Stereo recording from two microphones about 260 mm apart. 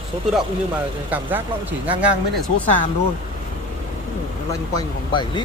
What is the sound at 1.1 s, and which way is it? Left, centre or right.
Speech, centre.